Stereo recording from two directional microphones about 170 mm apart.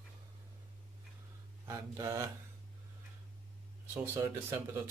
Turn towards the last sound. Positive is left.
turn(degrees=-15)  # may be behind; listen again after turning